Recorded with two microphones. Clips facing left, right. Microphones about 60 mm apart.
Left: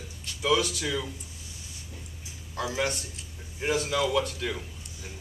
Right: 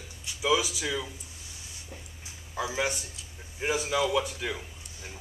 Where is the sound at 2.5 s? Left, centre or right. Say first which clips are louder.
Left 1 dB; centre.